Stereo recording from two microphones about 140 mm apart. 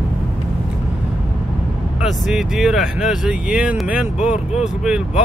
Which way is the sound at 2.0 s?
Centre (ahead or behind).